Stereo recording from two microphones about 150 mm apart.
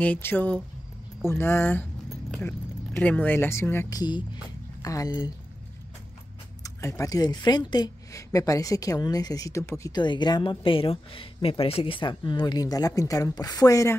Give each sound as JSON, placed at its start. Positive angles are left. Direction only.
{"t": 0.0, "sound": "speech", "side_deg": 10}
{"t": 2.0, "sound": "a sound", "side_deg": 5}
{"t": 3.0, "sound": "speech", "side_deg": 10}
{"t": 4.0, "sound": "speech", "side_deg": 30}
{"t": 6.6, "sound": "speech", "side_deg": 20}